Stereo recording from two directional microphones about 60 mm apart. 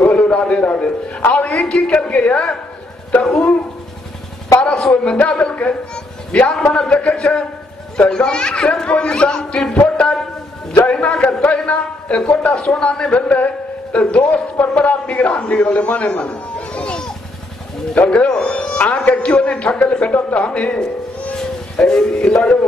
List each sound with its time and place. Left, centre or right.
0.1 s a man's voice: centre
3.2 s speech: centre
4.6 s a sound: centre
5.0 s a man's voice: centre
10.7 s a man's voice: centre